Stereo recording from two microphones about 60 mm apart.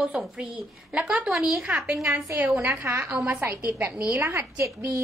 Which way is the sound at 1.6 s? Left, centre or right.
Right.